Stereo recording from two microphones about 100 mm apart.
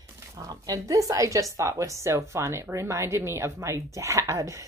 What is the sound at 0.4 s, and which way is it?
Speech, 35° right (ahead or behind).